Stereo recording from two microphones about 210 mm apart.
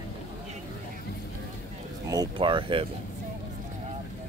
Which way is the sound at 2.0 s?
20° right (ahead or behind).